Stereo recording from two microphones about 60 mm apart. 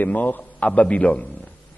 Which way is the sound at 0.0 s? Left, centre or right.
Left.